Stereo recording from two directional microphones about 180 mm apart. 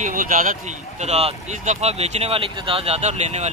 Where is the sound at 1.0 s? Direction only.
40° right (ahead or behind).